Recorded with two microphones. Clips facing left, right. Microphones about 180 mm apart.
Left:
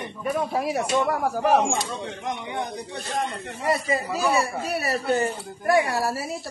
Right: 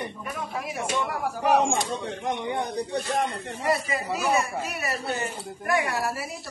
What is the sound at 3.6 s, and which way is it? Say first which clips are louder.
Speech: left 2 dB; 30° left (ahead or behind).